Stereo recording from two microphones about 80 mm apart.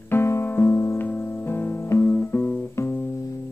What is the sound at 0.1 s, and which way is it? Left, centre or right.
Piano, left.